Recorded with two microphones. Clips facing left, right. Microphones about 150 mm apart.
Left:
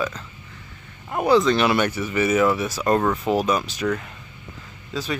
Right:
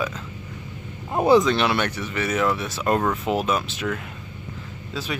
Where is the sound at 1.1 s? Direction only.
25° right (ahead or behind).